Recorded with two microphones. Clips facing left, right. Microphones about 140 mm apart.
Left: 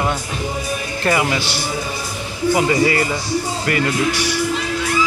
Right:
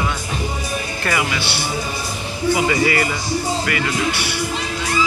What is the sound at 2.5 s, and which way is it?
Speech, 30° left (ahead or behind).